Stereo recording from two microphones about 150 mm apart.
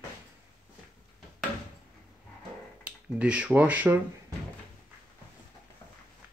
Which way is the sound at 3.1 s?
10° right (ahead or behind).